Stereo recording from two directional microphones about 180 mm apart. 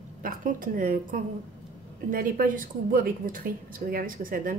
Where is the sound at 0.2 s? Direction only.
50° right (ahead or behind).